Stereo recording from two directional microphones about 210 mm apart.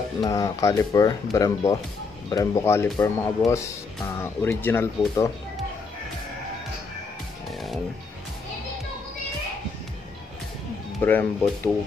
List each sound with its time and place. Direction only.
0.2 s speech: 15° left (ahead or behind)
11.0 s speech: 10° left (ahead or behind)